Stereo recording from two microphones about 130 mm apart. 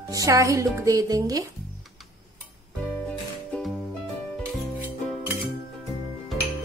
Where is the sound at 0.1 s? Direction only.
25° right (ahead or behind).